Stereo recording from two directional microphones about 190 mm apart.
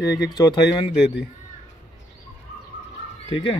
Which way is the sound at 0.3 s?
20° left (ahead or behind).